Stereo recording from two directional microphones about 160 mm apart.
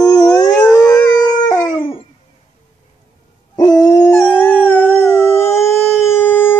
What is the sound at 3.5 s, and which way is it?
Howl, 25° left (ahead or behind).